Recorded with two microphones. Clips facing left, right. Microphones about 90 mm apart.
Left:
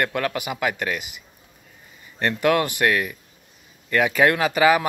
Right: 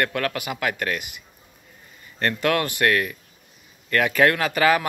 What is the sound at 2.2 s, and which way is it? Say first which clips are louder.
Speech: left 2 dB; 15° left (ahead or behind).